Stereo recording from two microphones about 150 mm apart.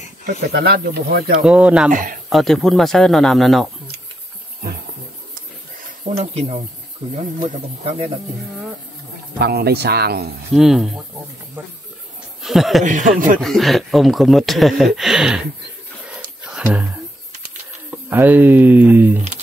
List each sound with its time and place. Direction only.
0.5 s speech: 90° right
1.4 s speech: 5° right (ahead or behind)
1.9 s speech: 60° right (ahead or behind)
2.2 s speech: centre (ahead or behind)
6.0 s speech: 45° right (ahead or behind)
9.4 s speech: 90° right
10.5 s speech: 5° right (ahead or behind)
12.4 s speech: centre (ahead or behind)
12.8 s speech: 55° right (ahead or behind)
13.4 s speech: centre (ahead or behind)
16.4 s music: 5° right (ahead or behind)
18.1 s speech: 10° right (ahead or behind)